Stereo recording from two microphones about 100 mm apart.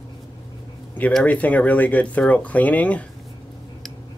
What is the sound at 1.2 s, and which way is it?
Speech, 15° left (ahead or behind).